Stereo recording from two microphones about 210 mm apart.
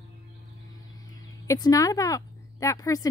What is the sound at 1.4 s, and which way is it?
A woman's voice, 15° left (ahead or behind).